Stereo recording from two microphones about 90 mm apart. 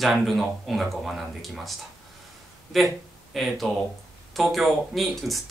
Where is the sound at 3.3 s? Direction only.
Centre (ahead or behind).